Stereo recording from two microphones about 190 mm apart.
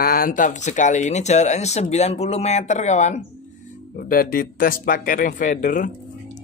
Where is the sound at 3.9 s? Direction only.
50° left (ahead or behind).